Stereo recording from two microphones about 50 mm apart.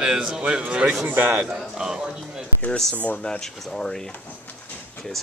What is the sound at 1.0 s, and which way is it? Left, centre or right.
Speech, right.